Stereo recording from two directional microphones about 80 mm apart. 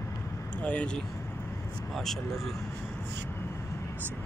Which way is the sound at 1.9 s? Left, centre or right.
Centre.